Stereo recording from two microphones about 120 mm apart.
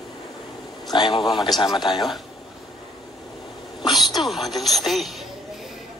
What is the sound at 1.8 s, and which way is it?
Speech, centre (ahead or behind).